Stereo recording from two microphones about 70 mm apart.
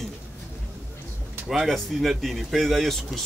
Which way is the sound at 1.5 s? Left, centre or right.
Centre.